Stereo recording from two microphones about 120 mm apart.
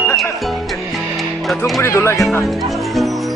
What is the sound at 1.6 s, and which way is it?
Speech, 20° left (ahead or behind).